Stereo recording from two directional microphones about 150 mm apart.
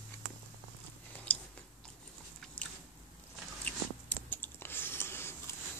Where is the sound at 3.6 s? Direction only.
10° left (ahead or behind).